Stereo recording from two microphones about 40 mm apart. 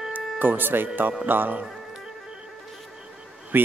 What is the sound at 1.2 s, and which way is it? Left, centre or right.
Speech, right.